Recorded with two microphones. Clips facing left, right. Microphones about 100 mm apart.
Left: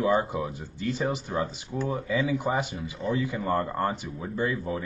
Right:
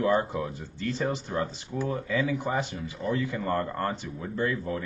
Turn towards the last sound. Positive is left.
turn(degrees=10)  # may be behind; listen again after turning